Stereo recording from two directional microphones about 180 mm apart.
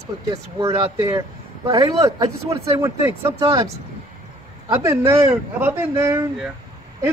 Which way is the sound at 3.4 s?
30° right (ahead or behind).